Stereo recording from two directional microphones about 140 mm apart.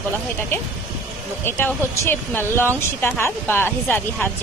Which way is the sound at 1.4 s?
15° left (ahead or behind).